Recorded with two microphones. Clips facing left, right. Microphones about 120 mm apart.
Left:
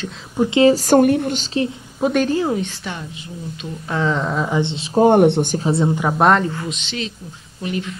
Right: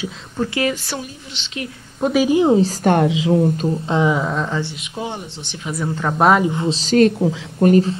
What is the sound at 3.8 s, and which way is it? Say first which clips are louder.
Speech: right 2 dB; 20° right (ahead or behind).